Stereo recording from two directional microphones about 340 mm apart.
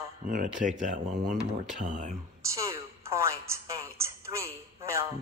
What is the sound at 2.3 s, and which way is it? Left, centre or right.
A woman's voice, centre.